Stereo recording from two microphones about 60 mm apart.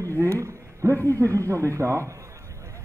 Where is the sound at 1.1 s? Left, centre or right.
Right.